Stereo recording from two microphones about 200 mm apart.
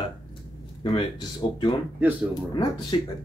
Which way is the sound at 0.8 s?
20° left (ahead or behind).